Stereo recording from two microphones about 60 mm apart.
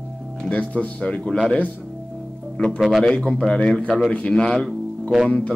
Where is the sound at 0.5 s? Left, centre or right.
Left.